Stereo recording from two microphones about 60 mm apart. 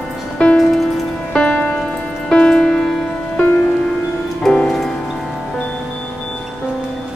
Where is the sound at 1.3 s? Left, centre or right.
Centre.